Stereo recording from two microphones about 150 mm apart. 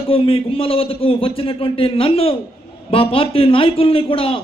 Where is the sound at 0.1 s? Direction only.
40° left (ahead or behind).